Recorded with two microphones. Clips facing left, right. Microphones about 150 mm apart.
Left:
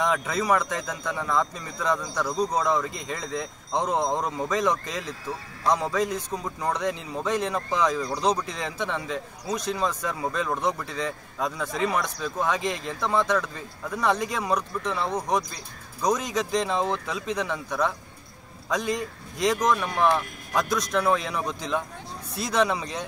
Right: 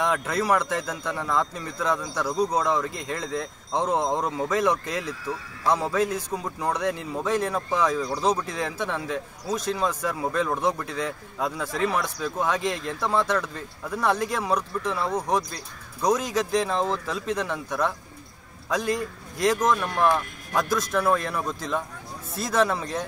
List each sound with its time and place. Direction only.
0.0 s speech: 5° right (ahead or behind)
16.8 s speech: 20° left (ahead or behind)
17.5 s speech: 10° right (ahead or behind)